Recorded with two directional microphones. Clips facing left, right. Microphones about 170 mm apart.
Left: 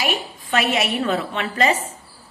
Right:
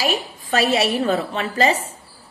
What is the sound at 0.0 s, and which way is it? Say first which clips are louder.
A woman's voice: right 2 dB; 35° right (ahead or behind).